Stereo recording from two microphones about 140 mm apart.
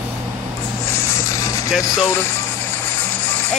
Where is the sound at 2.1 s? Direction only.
15° left (ahead or behind).